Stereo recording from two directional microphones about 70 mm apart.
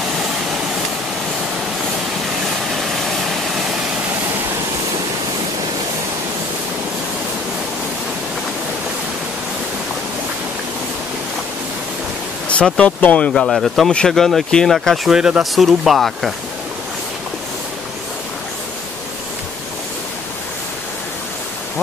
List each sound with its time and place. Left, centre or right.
2.4 s vehicle: centre
12.8 s speech: centre
13.3 s speech: centre
15.0 s speech: centre